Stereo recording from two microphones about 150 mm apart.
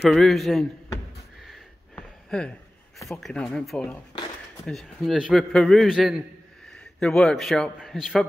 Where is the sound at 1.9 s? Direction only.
5° left (ahead or behind).